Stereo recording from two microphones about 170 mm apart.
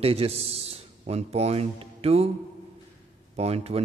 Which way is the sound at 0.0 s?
35° right (ahead or behind).